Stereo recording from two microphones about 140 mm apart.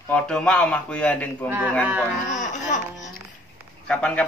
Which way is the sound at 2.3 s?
60° left (ahead or behind).